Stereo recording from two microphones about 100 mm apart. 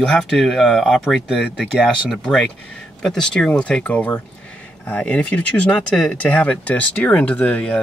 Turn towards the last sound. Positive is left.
turn(degrees=15)  # may be behind; listen again after turning